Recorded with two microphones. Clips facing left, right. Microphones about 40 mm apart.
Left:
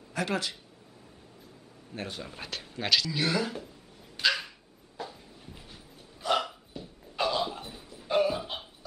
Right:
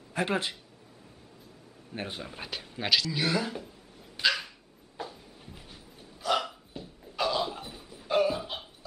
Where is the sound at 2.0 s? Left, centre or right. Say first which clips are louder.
Right 1 dB; right.